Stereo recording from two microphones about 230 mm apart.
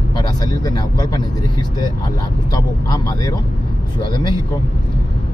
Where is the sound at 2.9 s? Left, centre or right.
Centre.